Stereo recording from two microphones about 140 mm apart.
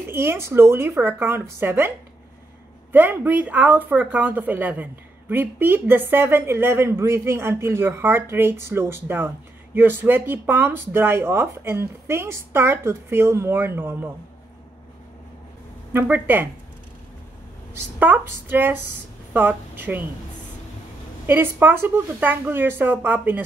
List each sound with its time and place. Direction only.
0.0 s speech: 15° right (ahead or behind)
2.9 s speech: 10° right (ahead or behind)
15.9 s speech: 15° right (ahead or behind)
17.9 s speech: 15° right (ahead or behind)
21.3 s speech: 15° right (ahead or behind)